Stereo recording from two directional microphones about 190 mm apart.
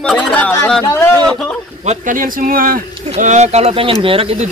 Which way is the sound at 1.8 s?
40° right (ahead or behind).